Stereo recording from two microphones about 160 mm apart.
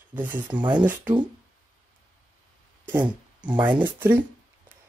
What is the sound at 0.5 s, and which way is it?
Speech, 30° right (ahead or behind).